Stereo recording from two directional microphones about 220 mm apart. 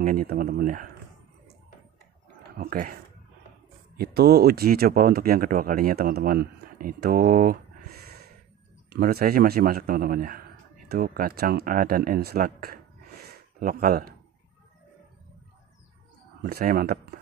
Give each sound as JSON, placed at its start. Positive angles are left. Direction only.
{"t": 0.0, "sound": "speech", "side_deg": -40}
{"t": 2.6, "sound": "speech", "side_deg": -40}
{"t": 8.9, "sound": "speech", "side_deg": -45}
{"t": 16.4, "sound": "speech", "side_deg": -40}